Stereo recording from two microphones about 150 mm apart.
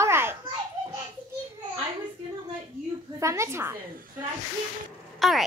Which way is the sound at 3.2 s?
20° right (ahead or behind).